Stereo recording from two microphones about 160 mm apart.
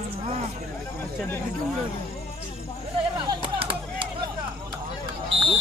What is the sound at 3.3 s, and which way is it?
Chop, 30° right (ahead or behind).